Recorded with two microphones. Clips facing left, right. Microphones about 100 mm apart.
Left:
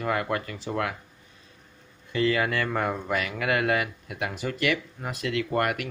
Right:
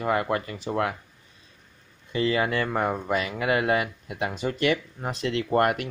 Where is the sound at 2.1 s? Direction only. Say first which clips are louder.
Even; 25° right (ahead or behind).